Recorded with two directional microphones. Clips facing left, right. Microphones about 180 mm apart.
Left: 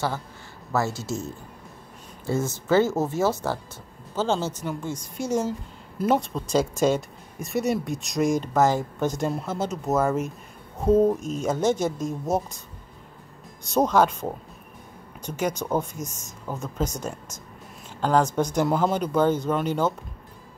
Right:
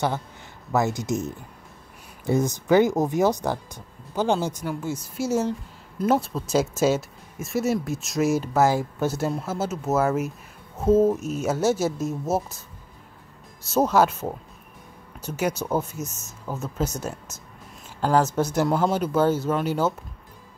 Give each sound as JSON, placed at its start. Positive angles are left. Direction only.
{"t": 0.7, "sound": "speech", "side_deg": -15}
{"t": 13.7, "sound": "speech", "side_deg": -5}
{"t": 18.0, "sound": "speech", "side_deg": -5}